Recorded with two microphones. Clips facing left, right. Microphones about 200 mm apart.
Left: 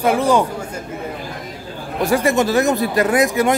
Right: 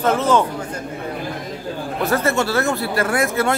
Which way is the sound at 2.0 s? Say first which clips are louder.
Left 4 dB; 15° left (ahead or behind).